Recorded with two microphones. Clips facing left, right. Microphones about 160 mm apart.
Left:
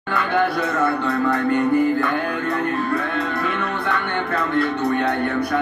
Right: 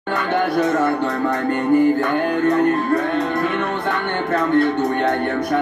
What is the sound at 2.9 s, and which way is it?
Music, 40° right (ahead or behind).